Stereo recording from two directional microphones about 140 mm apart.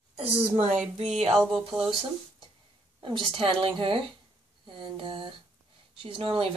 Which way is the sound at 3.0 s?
35° right (ahead or behind).